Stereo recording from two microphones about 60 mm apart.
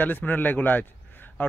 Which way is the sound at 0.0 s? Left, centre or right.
Left.